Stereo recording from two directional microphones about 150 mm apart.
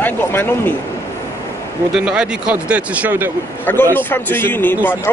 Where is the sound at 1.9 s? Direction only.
5° right (ahead or behind).